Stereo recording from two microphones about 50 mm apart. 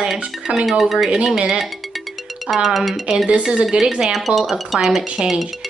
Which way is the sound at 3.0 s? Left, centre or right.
Centre.